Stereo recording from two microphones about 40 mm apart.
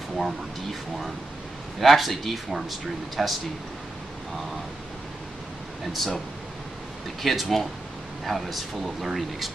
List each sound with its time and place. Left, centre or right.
0.2 s speech: centre
5.9 s speech: centre